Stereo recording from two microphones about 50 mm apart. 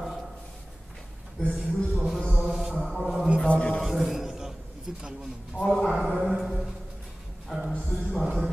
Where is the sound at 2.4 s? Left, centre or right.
Centre.